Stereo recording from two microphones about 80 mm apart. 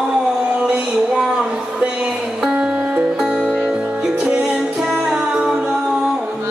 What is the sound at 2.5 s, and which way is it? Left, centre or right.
Music, centre.